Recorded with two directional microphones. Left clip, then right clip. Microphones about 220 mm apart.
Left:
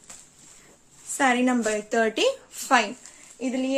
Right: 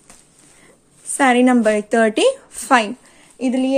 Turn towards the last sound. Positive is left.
turn(degrees=-50)  # may be behind; listen again after turning